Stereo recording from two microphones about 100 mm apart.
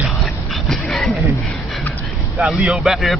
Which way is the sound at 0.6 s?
5° left (ahead or behind).